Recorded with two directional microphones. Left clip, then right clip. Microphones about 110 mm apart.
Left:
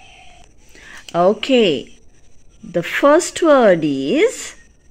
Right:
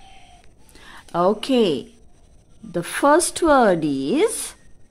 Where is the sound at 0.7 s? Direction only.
15° left (ahead or behind).